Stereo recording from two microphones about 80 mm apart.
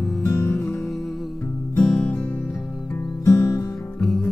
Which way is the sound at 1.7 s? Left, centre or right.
Centre.